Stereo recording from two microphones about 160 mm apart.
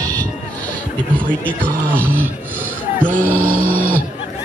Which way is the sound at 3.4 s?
60° right (ahead or behind).